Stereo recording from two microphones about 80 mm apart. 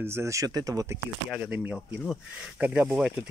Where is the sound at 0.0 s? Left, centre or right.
Right.